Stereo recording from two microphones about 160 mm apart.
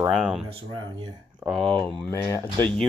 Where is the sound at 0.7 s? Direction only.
30° right (ahead or behind).